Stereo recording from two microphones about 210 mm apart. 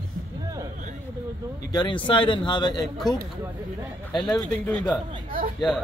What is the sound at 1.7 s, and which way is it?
Speech, 20° left (ahead or behind).